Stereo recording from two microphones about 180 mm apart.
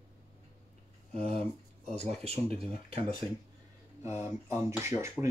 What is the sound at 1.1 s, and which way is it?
Speech, 35° right (ahead or behind).